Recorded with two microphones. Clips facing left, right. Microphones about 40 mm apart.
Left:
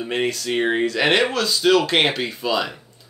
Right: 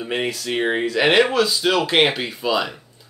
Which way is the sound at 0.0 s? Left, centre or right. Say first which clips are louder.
Left 1 dB; centre.